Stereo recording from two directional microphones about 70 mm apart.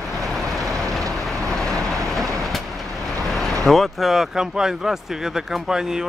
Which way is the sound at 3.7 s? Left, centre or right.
Centre.